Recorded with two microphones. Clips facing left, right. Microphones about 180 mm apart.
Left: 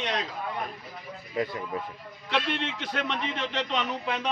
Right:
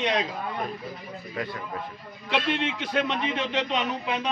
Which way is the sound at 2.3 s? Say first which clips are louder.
Right 3 dB; 10° right (ahead or behind).